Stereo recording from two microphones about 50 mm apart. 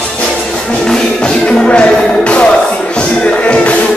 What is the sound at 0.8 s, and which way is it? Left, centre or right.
Music, centre.